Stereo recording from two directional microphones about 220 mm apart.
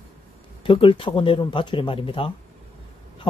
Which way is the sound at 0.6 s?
25° left (ahead or behind).